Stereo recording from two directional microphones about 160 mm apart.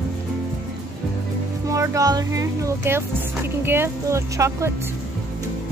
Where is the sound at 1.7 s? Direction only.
20° right (ahead or behind).